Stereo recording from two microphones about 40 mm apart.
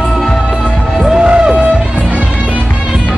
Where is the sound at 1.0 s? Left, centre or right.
Centre.